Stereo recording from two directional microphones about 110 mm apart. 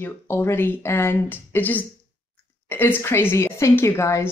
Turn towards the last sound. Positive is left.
turn(degrees=25)  # may be behind; listen again after turning